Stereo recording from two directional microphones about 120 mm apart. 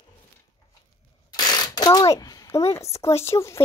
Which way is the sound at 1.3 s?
35° left (ahead or behind).